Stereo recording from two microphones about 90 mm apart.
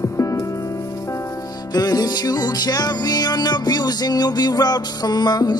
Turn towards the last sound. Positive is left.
turn(degrees=50)  # may be behind; listen again after turning